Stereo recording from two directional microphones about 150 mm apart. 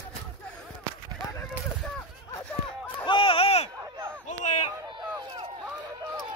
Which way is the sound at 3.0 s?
35° left (ahead or behind).